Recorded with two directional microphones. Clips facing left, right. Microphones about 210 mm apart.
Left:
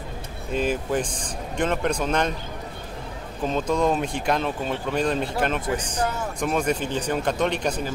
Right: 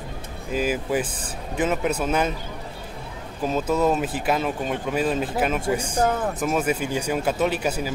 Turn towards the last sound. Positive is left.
turn(degrees=-5)  # may be behind; listen again after turning